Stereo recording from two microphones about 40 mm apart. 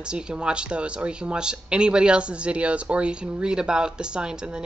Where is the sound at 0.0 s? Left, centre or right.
Right.